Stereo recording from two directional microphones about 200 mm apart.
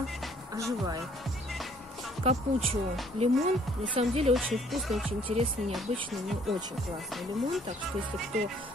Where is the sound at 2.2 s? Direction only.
30° right (ahead or behind).